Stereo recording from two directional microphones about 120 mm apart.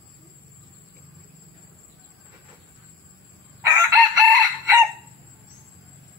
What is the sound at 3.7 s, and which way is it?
Chicken, 25° right (ahead or behind).